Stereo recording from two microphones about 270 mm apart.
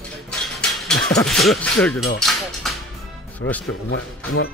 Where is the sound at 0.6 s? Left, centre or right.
Centre.